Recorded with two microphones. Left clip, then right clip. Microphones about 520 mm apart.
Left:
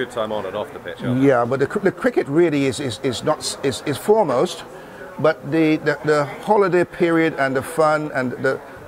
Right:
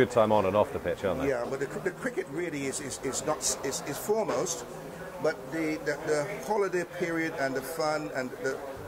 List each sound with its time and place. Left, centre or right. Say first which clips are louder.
0.0 s speech: even; right
1.2 s a man's voice: left 13 dB; left